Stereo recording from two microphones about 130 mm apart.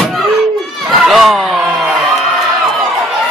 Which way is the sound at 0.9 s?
Centre (ahead or behind).